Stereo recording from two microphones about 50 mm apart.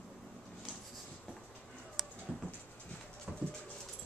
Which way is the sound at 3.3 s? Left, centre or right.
Centre.